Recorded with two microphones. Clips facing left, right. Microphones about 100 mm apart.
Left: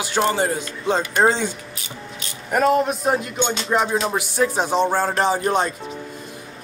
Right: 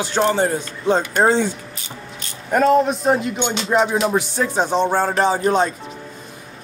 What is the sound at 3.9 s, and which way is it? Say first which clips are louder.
Music: right 3 dB; 10° right (ahead or behind).